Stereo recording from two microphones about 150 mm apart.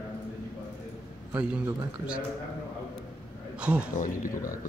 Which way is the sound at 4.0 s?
65° left (ahead or behind).